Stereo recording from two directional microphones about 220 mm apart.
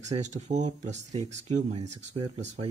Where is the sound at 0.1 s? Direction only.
30° right (ahead or behind).